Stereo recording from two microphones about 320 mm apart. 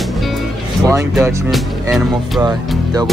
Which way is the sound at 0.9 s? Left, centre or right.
Centre.